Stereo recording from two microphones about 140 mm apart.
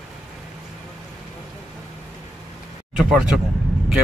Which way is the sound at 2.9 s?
5° right (ahead or behind).